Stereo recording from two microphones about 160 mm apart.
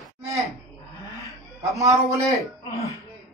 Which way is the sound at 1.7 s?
20° right (ahead or behind).